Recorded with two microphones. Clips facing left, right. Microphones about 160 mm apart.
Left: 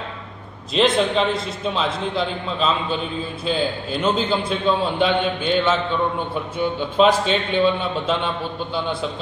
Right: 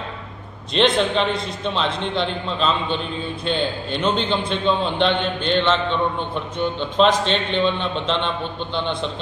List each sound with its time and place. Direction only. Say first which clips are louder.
0.7 s a man's voice: even; centre (ahead or behind)